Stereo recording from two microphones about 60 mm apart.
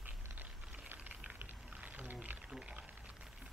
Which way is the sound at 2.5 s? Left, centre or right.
Centre.